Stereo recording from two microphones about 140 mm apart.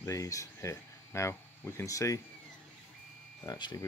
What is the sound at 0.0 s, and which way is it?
Speech, 20° left (ahead or behind).